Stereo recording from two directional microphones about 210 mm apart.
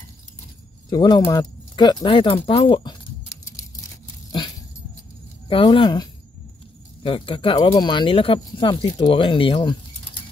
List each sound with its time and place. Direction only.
0.8 s speech: 20° left (ahead or behind)
5.5 s speech: 25° left (ahead or behind)